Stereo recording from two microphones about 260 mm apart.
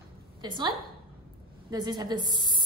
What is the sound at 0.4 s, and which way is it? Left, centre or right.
A woman's voice, centre.